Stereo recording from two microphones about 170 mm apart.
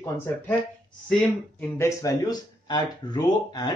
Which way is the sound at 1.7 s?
15° left (ahead or behind).